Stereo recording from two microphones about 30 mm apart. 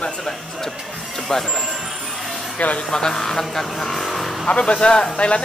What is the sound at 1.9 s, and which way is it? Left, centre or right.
Jingle bell, centre.